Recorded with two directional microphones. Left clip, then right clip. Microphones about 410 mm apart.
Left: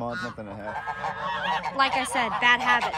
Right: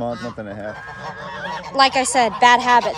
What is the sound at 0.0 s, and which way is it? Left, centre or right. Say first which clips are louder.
Fowl: right 5 dB; right.